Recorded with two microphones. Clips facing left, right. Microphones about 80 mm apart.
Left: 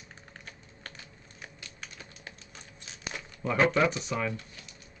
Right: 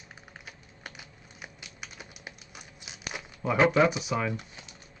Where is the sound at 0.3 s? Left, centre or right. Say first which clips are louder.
Even; centre.